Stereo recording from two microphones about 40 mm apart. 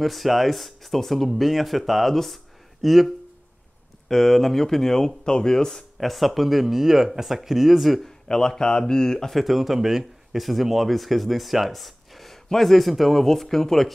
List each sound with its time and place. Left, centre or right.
0.0 s speech: centre
4.1 s speech: centre
5.9 s speech: centre
8.0 s speech: centre
9.4 s speech: centre